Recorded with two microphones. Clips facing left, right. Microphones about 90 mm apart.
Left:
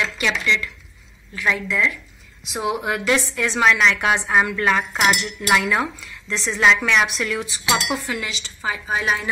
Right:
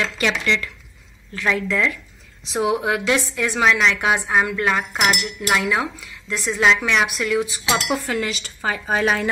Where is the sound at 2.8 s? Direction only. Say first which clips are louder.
Right 1 dB; 25° right (ahead or behind).